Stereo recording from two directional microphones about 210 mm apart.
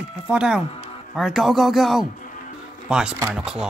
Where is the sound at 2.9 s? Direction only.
5° right (ahead or behind).